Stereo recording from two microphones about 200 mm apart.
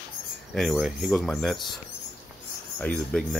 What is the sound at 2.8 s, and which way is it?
Speech, 5° left (ahead or behind).